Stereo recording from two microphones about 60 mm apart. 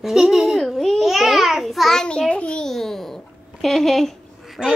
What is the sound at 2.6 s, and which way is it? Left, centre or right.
Babbling, centre.